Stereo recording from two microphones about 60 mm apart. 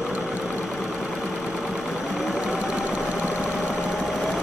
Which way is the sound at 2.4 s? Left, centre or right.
Centre.